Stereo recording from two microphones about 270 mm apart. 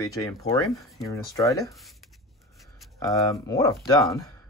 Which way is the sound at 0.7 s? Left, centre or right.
Centre.